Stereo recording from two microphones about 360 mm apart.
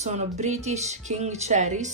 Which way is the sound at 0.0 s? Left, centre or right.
Centre.